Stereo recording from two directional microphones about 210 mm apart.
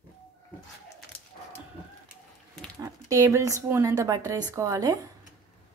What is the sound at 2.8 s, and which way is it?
Speech, 15° right (ahead or behind).